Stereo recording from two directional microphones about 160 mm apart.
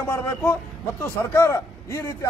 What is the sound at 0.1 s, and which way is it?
A man's voice, 15° left (ahead or behind).